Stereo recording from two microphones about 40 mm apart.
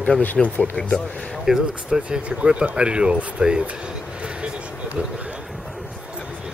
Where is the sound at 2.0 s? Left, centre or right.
Right.